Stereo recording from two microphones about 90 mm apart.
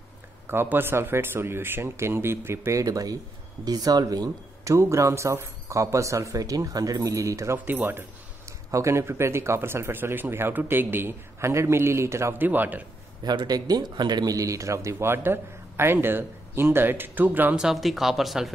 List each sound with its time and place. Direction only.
0.5 s a man's voice: 25° right (ahead or behind); by 4.7 s 45° right (ahead or behind)
4.7 s speech: 30° right (ahead or behind)
7.5 s a man's voice: 20° right (ahead or behind)
8.7 s a man's voice: 30° right (ahead or behind)
12.4 s a man's voice: 20° right (ahead or behind)
13.2 s a man's voice: 50° right (ahead or behind); by 17.6 s 20° right (ahead or behind)
17.6 s speech: 5° right (ahead or behind)